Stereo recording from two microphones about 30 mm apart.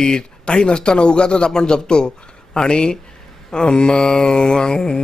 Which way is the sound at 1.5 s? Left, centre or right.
Left.